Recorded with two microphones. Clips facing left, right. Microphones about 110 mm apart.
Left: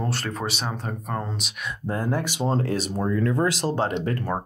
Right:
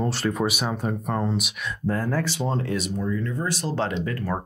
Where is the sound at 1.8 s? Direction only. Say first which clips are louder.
Right 1 dB; 20° left (ahead or behind).